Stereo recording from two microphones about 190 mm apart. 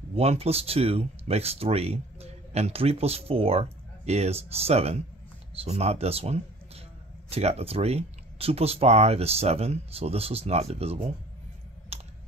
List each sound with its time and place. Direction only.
0.1 s speech: 30° right (ahead or behind)
11.9 s typing: 35° right (ahead or behind)